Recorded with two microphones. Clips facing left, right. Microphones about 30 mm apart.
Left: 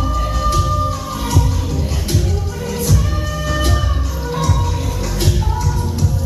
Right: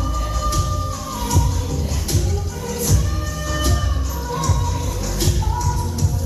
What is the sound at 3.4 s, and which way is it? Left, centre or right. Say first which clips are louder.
Music: left 3 dB; left.